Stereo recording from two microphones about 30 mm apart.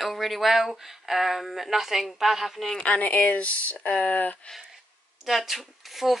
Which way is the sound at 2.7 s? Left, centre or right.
Left.